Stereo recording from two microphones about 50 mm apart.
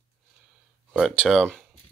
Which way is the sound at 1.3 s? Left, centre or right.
Centre.